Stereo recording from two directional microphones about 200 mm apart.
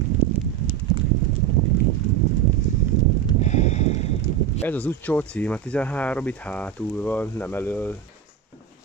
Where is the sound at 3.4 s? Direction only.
35° left (ahead or behind).